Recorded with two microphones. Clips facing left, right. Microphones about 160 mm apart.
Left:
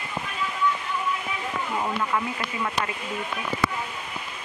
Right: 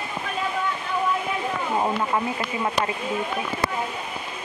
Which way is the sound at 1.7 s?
30° right (ahead or behind).